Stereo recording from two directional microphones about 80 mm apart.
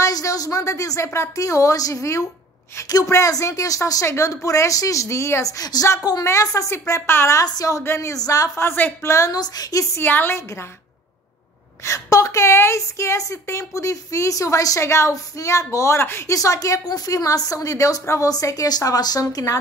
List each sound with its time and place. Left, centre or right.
0.0 s a woman's voice: left
7.3 s a woman's voice: left
7.8 s a woman's voice: left
8.1 s a woman's voice: left
9.0 s a woman's voice: left
9.9 s a woman's voice: left
11.8 s a woman's voice: left
16.3 s a woman's voice: left